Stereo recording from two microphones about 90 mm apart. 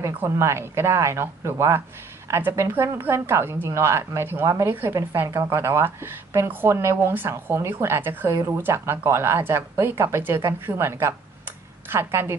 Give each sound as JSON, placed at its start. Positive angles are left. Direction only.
{"t": 0.2, "sound": "a woman's voice", "side_deg": -30}